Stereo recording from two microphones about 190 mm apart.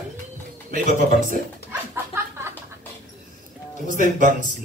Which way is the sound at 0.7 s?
45° right (ahead or behind).